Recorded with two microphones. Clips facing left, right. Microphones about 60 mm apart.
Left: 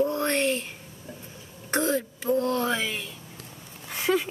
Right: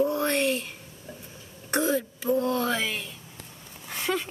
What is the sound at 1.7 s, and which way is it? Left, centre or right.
A woman's voice, centre.